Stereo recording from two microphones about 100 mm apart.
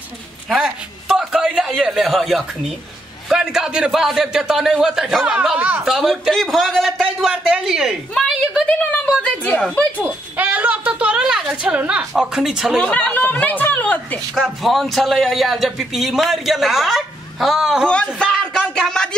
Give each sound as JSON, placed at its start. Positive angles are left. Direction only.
{"t": 0.5, "sound": "a sound", "side_deg": -5}
{"t": 3.3, "sound": "a man's voice", "side_deg": -5}
{"t": 5.9, "sound": "a man's voice", "side_deg": 0}
{"t": 9.2, "sound": "speech", "side_deg": 10}
{"t": 10.3, "sound": "a sound", "side_deg": -20}
{"t": 12.1, "sound": "a man's voice", "side_deg": -5}
{"t": 12.9, "sound": "speech", "side_deg": 15}
{"t": 14.3, "sound": "a man's voice", "side_deg": 0}
{"t": 17.8, "sound": "a sound", "side_deg": 10}